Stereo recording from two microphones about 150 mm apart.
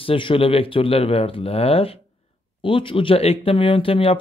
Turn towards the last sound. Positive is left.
turn(degrees=40)  # may be behind; listen again after turning